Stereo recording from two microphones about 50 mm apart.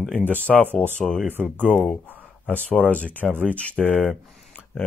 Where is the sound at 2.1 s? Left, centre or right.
Left.